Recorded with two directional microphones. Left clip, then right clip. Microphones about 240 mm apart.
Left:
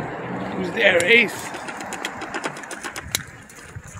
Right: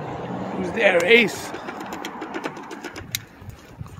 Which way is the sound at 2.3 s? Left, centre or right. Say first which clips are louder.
Left 2 dB; centre.